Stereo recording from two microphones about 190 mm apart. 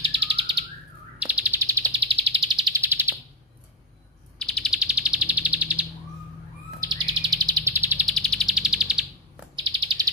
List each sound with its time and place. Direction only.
0.0 s bird: 30° right (ahead or behind)
1.2 s bird: 5° right (ahead or behind); by 2.8 s 25° right (ahead or behind)
2.8 s bird: 10° right (ahead or behind)
4.4 s bird: 5° left (ahead or behind)
6.8 s bird: 20° right (ahead or behind)
8.1 s bird: 5° left (ahead or behind)
9.6 s bird: 25° right (ahead or behind)